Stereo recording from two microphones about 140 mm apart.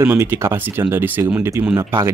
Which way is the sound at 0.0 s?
15° right (ahead or behind).